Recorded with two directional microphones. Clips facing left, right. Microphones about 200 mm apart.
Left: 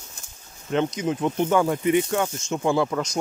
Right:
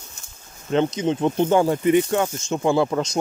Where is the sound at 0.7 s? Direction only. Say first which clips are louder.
Right 3 dB; 30° right (ahead or behind).